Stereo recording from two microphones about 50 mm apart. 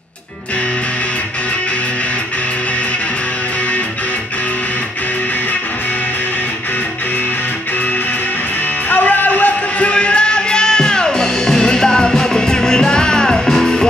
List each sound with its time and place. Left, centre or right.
8.8 s music: left; by 13.8 s centre